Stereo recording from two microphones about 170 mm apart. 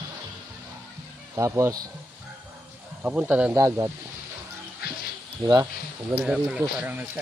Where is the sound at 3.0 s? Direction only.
10° right (ahead or behind).